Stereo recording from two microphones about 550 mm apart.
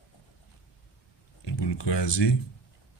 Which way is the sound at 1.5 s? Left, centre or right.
Left.